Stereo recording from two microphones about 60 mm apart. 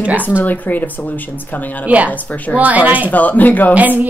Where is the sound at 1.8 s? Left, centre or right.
Right.